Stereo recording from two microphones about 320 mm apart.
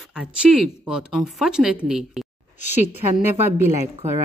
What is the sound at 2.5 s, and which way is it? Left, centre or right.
Speech, left.